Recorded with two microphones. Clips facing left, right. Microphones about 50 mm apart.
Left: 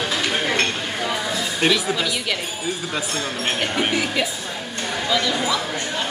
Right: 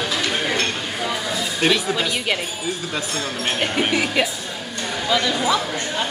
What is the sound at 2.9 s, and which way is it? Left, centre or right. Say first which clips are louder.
Speech: even; centre.